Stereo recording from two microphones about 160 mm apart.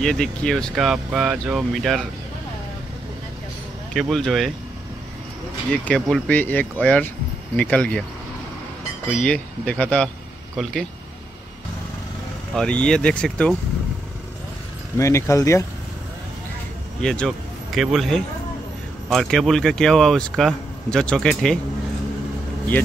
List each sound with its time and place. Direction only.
0.0 s speech: 5° left (ahead or behind)
3.9 s speech: centre (ahead or behind)
5.7 s speech: 5° left (ahead or behind)
9.1 s speech: 5° left (ahead or behind)
12.5 s speech: 5° left (ahead or behind)
15.0 s speech: 20° left (ahead or behind)
17.0 s speech: 5° left (ahead or behind)